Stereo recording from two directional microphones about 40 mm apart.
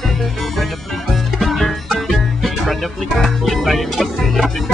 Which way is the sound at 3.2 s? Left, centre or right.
Centre.